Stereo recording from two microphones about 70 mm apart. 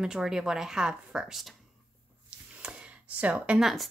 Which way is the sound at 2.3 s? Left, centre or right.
Centre.